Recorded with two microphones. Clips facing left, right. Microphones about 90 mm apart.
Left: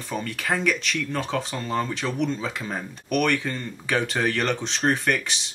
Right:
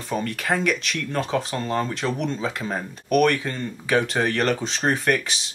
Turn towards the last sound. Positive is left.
turn(degrees=0)  # may be behind; listen again after turning